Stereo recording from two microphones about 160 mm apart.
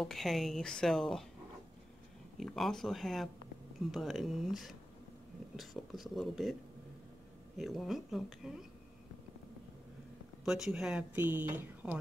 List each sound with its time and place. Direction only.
0.0 s a woman's voice: centre (ahead or behind)
2.3 s a woman's voice: centre (ahead or behind)
7.5 s a woman's voice: centre (ahead or behind)
10.4 s speech: 5° right (ahead or behind)